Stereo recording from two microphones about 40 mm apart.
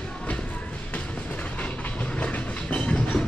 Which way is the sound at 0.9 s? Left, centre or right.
Left.